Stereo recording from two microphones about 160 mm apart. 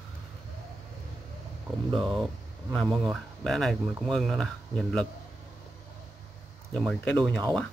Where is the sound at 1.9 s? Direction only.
Centre (ahead or behind).